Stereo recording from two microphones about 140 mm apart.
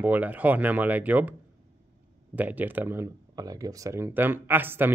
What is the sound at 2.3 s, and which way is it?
Speech, 10° right (ahead or behind).